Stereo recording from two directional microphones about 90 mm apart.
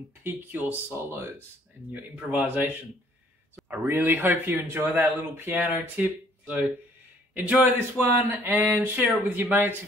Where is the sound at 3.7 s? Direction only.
25° right (ahead or behind).